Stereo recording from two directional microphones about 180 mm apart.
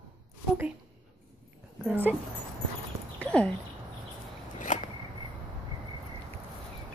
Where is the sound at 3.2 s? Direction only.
5° left (ahead or behind).